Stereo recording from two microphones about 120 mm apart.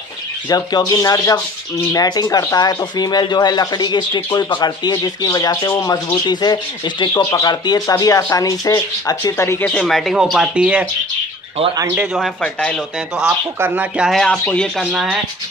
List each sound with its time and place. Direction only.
0.5 s speech: 30° left (ahead or behind)
6.2 s speech: 35° left (ahead or behind)
9.4 s speech: 20° left (ahead or behind)
9.7 s speech: 5° left (ahead or behind)
11.9 s speech: 10° right (ahead or behind)
12.2 s speech: 5° left (ahead or behind)
13.6 s speech: 15° right (ahead or behind)
14.2 s speech: 5° left (ahead or behind)
14.8 s speech: 5° right (ahead or behind)